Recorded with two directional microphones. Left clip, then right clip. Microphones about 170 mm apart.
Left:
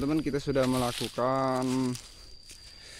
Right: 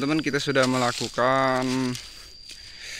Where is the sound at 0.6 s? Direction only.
10° right (ahead or behind).